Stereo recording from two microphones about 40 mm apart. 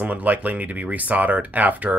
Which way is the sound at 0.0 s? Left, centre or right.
Right.